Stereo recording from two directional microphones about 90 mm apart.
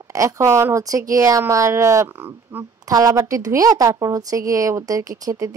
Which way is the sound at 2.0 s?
20° right (ahead or behind).